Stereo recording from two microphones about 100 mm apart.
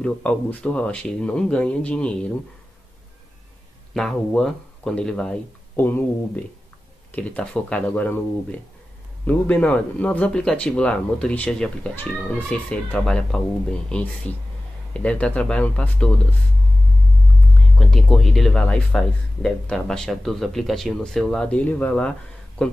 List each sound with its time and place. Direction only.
0.0 s speech: 10° left (ahead or behind)
3.9 s speech: 5° left (ahead or behind)
5.8 s speech: 20° left (ahead or behind)
7.1 s speech: 10° left (ahead or behind)
17.7 s speech: 5° left (ahead or behind)